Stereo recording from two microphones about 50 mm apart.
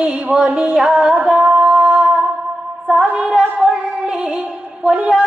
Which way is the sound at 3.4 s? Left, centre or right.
Centre.